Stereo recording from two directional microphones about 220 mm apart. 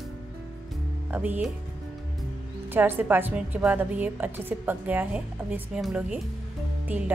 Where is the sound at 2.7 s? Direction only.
10° right (ahead or behind).